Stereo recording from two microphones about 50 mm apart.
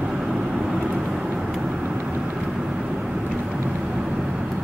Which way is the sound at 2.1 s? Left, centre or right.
Right.